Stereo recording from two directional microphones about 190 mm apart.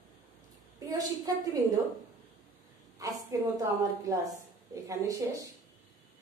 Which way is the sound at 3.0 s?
20° right (ahead or behind).